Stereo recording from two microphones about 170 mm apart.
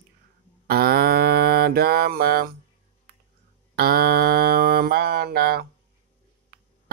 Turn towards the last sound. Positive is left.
turn(degrees=-65)  # may be behind; listen again after turning